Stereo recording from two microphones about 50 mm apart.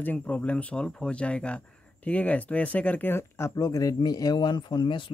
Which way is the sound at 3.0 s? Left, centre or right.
Left.